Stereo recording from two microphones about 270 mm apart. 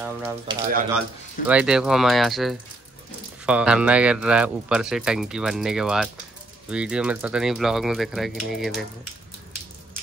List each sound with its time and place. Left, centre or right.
0.0 s speech: centre